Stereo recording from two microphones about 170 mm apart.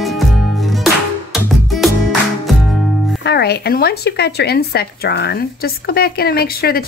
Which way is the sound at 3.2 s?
70° left (ahead or behind).